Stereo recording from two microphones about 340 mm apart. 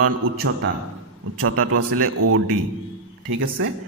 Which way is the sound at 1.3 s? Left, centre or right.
Right.